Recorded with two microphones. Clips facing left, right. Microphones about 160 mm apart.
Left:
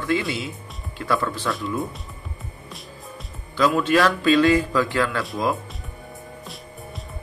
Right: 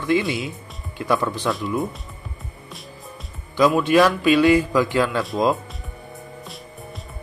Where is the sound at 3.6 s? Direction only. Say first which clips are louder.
Right 3 dB; 15° right (ahead or behind).